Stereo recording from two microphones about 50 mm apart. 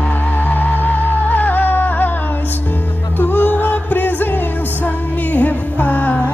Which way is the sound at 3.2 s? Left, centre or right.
Left.